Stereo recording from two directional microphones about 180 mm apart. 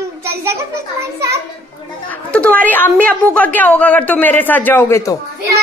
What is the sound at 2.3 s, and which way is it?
A woman's voice, 10° left (ahead or behind).